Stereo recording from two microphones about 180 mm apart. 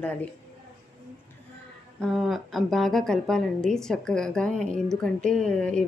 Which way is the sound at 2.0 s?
Centre (ahead or behind).